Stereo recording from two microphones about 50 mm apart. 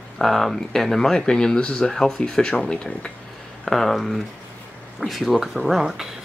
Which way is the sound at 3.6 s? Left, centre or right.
Centre.